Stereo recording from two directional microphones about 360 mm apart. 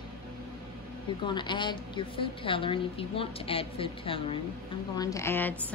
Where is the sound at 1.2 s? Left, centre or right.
Centre.